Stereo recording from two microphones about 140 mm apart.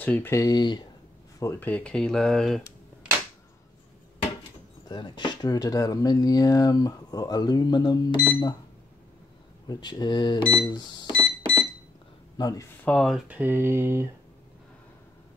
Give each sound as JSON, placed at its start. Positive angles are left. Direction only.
{"t": 0.0, "sound": "speech", "side_deg": 15}
{"t": 1.4, "sound": "speech", "side_deg": 15}
{"t": 4.8, "sound": "speech", "side_deg": 30}
{"t": 9.7, "sound": "speech", "side_deg": 30}
{"t": 10.5, "sound": "a sound", "side_deg": 30}
{"t": 12.4, "sound": "speech", "side_deg": 25}
{"t": 12.8, "sound": "speech", "side_deg": 5}
{"t": 13.3, "sound": "a sound", "side_deg": -15}